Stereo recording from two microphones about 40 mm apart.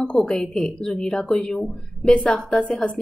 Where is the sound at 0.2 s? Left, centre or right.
Centre.